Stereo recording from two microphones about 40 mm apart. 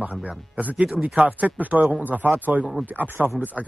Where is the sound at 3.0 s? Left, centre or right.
Right.